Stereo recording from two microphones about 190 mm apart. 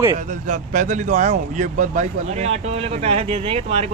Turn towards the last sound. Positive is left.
turn(degrees=-30)  # may be behind; listen again after turning